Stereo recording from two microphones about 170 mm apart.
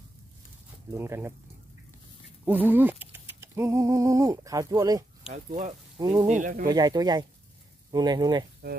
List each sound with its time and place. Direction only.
0.9 s speech: 15° right (ahead or behind)
2.4 s speech: 10° right (ahead or behind)
5.3 s speech: 45° right (ahead or behind)
5.9 s speech: 20° right (ahead or behind)
6.3 s speech: 50° right (ahead or behind)
6.7 s speech: 25° right (ahead or behind)